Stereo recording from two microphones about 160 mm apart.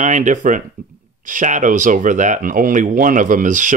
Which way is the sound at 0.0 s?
50° right (ahead or behind).